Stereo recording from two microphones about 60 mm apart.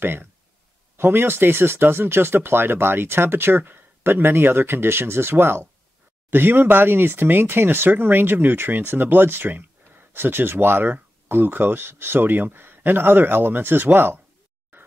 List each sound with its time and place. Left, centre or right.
0.0 s speech: right